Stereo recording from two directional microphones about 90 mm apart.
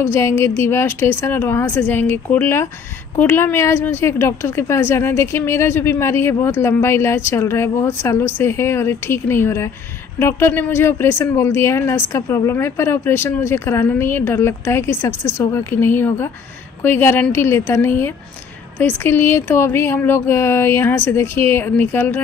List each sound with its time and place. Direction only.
0.0 s speech: 25° left (ahead or behind)